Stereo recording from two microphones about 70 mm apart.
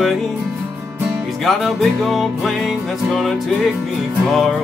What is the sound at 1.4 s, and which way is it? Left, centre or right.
Music, centre.